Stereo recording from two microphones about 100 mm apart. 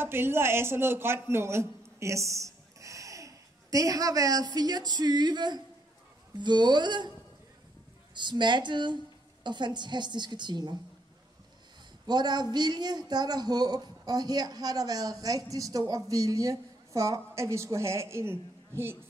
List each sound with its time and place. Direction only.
0.0 s a woman's voice: 25° right (ahead or behind); by 7.1 s 50° right (ahead or behind)
8.1 s a woman's voice: 50° right (ahead or behind)
12.1 s a man's voice: 45° right (ahead or behind); by 18.4 s 25° right (ahead or behind)